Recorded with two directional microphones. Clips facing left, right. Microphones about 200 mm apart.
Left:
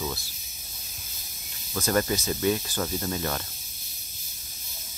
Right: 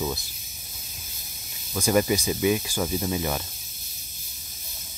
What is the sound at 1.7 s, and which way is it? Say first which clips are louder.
Speech: right 3 dB; 10° right (ahead or behind).